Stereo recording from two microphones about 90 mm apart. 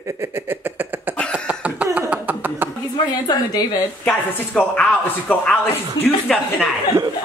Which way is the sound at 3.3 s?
55° left (ahead or behind).